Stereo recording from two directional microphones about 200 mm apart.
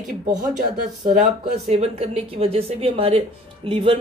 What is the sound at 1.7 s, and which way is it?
Speech, 30° right (ahead or behind).